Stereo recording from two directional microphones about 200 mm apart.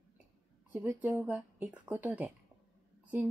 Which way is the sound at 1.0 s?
5° right (ahead or behind).